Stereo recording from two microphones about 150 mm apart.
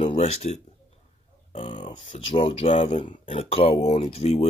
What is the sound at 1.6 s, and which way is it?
Speech, 35° left (ahead or behind).